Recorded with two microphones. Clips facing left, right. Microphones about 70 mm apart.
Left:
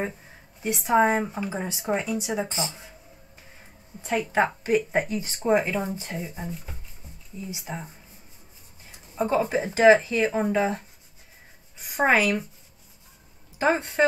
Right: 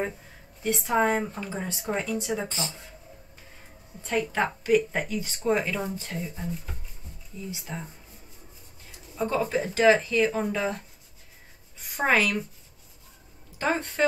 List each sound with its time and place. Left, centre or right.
0.6 s speech: centre
4.0 s speech: centre
4.3 s speech: left
9.1 s speech: left
11.8 s a woman's voice: centre
13.6 s speech: centre